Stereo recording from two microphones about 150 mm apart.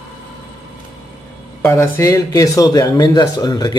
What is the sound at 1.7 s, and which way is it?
Speech, 20° left (ahead or behind).